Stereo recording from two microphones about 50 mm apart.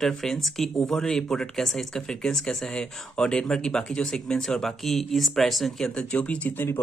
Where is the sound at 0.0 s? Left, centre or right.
Centre.